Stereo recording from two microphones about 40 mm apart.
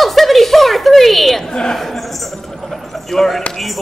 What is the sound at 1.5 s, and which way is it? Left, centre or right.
Speech, centre.